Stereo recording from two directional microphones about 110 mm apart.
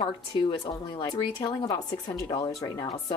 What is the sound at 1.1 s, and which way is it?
A woman's voice, 45° left (ahead or behind).